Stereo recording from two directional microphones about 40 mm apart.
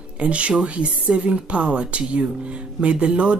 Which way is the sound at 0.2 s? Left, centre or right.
Right.